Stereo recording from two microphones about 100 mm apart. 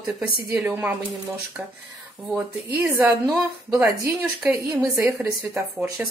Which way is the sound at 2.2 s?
15° right (ahead or behind).